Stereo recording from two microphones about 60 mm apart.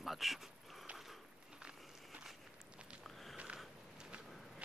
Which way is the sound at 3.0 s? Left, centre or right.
Centre.